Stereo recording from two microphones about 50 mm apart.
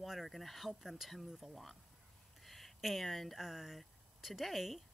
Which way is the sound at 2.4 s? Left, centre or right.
Centre.